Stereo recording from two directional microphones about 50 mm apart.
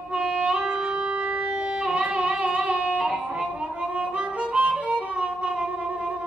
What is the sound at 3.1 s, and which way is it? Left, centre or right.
Harmonica, centre.